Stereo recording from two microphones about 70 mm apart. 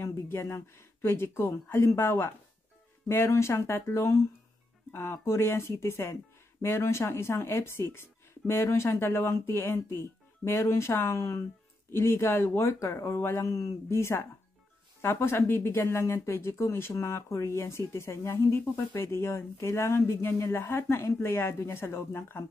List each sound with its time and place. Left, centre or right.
0.0 s speech: left